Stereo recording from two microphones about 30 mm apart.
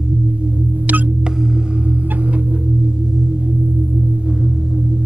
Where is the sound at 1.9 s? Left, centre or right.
Right.